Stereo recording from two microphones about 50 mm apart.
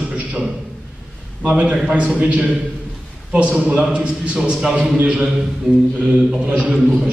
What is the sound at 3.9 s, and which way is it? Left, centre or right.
A man's voice, right.